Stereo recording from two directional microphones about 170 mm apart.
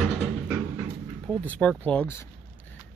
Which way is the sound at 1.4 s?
5° left (ahead or behind).